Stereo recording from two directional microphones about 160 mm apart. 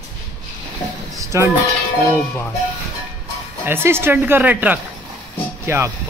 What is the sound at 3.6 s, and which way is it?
A woman's voice, 15° right (ahead or behind).